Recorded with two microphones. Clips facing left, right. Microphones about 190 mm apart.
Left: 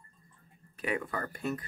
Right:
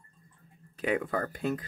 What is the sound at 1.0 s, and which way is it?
Speech, 50° right (ahead or behind).